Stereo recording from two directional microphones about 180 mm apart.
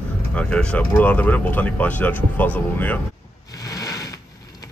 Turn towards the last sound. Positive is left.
turn(degrees=20)  # may be behind; listen again after turning